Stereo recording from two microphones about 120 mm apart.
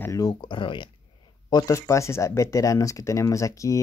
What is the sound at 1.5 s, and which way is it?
Speech, 25° left (ahead or behind).